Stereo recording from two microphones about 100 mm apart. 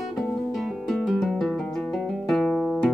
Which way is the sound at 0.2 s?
5° left (ahead or behind).